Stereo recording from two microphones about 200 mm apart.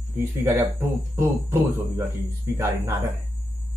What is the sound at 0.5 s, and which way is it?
Speech, 10° right (ahead or behind).